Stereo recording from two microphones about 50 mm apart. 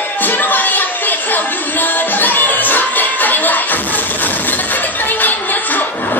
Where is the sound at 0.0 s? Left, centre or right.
Left.